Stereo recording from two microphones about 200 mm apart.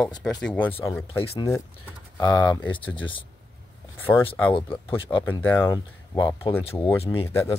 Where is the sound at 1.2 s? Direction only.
30° left (ahead or behind).